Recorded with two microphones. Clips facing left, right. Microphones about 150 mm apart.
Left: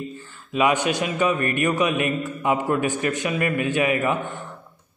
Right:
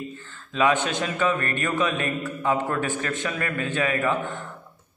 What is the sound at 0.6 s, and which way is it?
A man's voice, 15° left (ahead or behind).